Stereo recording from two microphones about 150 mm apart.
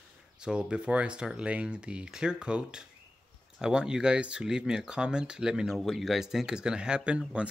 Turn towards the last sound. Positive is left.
turn(degrees=-5)  # may be behind; listen again after turning